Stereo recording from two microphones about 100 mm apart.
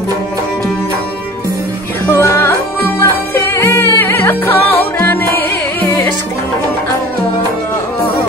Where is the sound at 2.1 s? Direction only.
25° left (ahead or behind).